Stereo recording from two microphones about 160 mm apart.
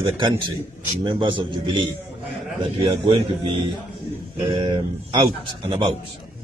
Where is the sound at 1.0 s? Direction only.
30° right (ahead or behind).